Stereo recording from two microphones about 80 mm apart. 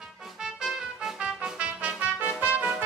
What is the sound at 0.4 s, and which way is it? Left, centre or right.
Music, centre.